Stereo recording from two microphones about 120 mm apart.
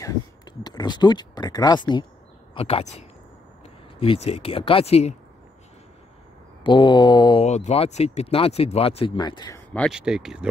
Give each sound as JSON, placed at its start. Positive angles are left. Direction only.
{"t": 0.0, "sound": "a sound", "side_deg": 35}
{"t": 2.5, "sound": "speech", "side_deg": 55}
{"t": 4.0, "sound": "speech", "side_deg": 55}
{"t": 6.6, "sound": "mantra", "side_deg": 40}
{"t": 7.4, "sound": "speech", "side_deg": 70}
{"t": 9.8, "sound": "speech", "side_deg": -5}